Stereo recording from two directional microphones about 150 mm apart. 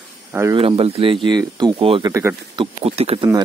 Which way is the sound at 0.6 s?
40° right (ahead or behind).